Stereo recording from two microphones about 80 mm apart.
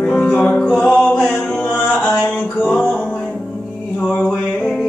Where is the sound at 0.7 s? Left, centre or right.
Centre.